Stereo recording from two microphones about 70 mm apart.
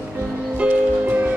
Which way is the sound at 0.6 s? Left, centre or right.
Right.